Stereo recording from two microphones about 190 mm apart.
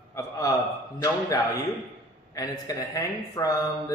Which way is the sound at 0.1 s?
20° left (ahead or behind).